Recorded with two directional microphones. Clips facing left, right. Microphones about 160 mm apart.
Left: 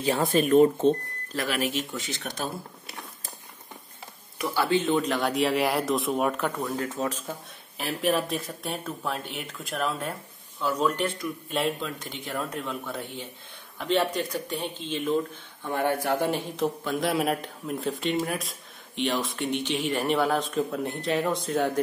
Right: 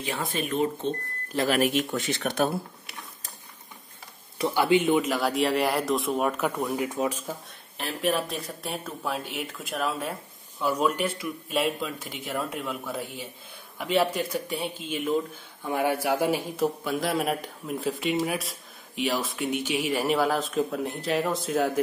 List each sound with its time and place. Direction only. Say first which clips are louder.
0.0 s speech: left 7 dB; 40° left (ahead or behind)
1.5 s speech: right 5 dB; 55° right (ahead or behind)
4.4 s a man's voice: right 3 dB; 15° right (ahead or behind)
7.7 s a man's voice: left 1 dB; centre (ahead or behind)